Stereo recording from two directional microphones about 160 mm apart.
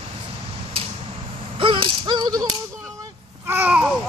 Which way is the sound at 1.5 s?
30° right (ahead or behind).